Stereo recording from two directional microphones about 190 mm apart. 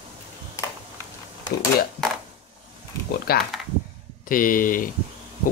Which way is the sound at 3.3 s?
55° left (ahead or behind).